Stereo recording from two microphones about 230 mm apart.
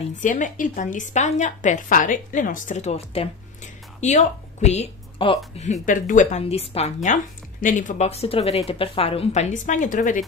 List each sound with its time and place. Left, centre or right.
0.2 s a woman's voice: left